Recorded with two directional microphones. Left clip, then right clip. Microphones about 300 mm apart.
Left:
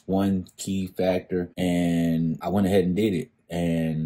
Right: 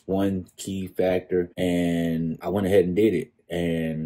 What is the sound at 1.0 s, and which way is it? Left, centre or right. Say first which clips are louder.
Speech: right 2 dB; left.